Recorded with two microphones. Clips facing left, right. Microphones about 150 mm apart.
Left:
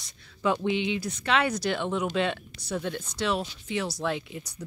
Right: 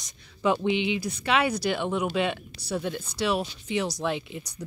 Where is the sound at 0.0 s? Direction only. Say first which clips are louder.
Right 2 dB; 15° right (ahead or behind).